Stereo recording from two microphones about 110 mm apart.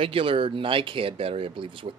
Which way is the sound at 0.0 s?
55° right (ahead or behind).